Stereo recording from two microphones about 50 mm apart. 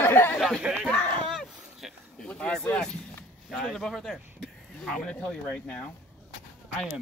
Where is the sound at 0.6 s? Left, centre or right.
Centre.